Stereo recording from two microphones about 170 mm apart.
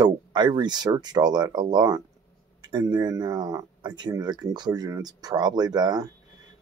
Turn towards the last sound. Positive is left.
turn(degrees=-25)  # may be behind; listen again after turning